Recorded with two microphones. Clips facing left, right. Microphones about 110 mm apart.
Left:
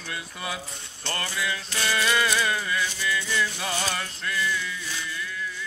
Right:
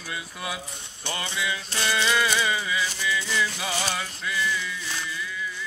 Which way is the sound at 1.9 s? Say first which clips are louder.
Even; centre (ahead or behind).